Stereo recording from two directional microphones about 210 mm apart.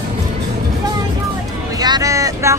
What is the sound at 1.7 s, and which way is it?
Vehicle, 15° right (ahead or behind).